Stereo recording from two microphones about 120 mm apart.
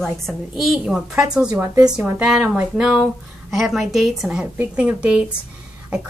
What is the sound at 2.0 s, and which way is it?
Speech, 10° right (ahead or behind).